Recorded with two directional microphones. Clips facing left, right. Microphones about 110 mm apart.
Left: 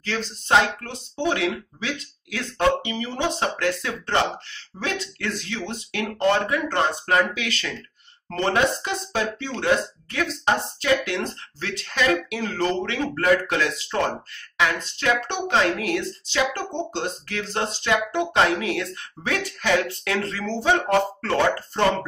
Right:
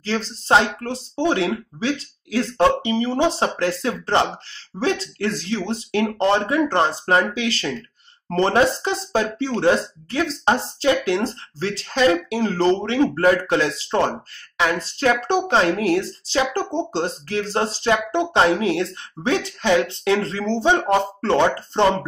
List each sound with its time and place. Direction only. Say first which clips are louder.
0.0 s speech: right 4 dB; 30° right (ahead or behind)